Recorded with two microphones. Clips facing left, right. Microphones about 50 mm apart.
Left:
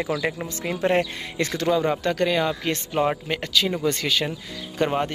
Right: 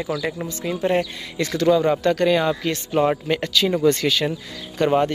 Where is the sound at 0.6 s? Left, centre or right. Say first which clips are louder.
Right 1 dB; left.